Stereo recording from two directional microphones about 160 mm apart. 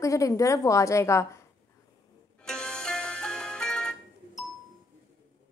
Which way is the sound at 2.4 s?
5° left (ahead or behind).